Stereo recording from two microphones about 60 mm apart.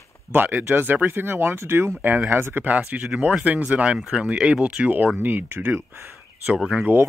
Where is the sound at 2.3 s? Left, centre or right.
Right.